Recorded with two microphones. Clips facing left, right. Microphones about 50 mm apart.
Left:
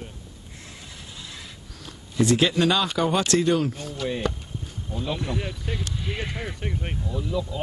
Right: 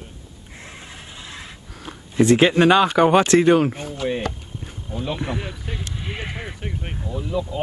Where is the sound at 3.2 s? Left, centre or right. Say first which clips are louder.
Right 6 dB; right.